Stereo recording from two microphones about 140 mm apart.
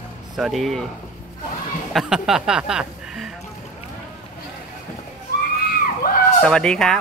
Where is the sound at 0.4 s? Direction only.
Centre (ahead or behind).